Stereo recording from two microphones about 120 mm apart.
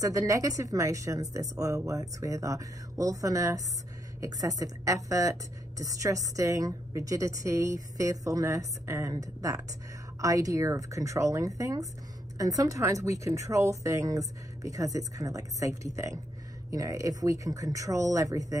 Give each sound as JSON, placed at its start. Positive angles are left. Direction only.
{"t": 0.0, "sound": "speech", "side_deg": -25}